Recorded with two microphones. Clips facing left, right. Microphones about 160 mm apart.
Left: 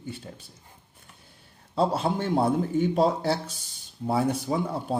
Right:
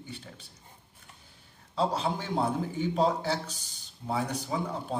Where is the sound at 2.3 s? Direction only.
35° left (ahead or behind).